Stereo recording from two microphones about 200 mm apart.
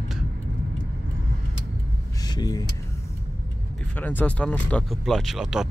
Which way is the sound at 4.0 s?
10° left (ahead or behind).